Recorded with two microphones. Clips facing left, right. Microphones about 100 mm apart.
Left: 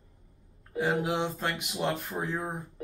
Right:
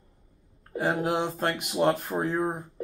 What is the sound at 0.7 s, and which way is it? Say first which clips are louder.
Speech: right 2 dB; 45° right (ahead or behind).